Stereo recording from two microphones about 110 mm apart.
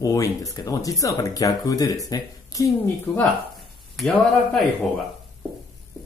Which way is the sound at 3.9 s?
5° left (ahead or behind).